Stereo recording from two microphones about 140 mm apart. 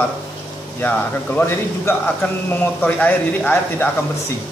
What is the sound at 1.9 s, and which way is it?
A man's voice, 15° left (ahead or behind).